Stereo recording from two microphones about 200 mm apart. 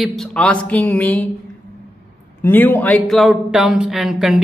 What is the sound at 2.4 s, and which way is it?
Speech, 10° left (ahead or behind).